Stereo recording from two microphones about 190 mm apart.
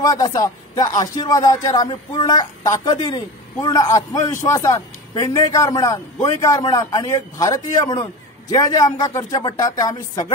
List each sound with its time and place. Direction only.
0.0 s a man's voice: 20° left (ahead or behind)